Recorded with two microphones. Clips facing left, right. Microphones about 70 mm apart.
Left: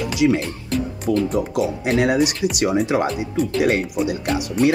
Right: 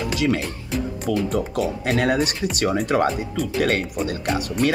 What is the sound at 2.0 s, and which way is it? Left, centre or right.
Speech, centre.